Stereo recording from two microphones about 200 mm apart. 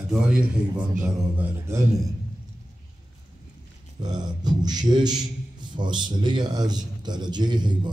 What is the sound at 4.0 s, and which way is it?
A man's voice, 20° right (ahead or behind).